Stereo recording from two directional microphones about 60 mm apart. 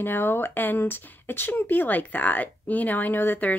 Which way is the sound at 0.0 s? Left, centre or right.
Left.